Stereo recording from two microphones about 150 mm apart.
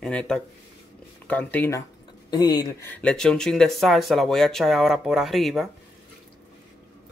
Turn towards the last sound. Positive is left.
turn(degrees=0)  # may be behind; listen again after turning